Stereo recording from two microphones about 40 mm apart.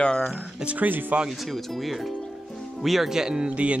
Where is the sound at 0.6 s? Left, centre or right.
Right.